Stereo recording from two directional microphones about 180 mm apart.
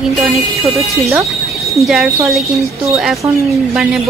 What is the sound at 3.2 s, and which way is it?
Speech, 15° right (ahead or behind).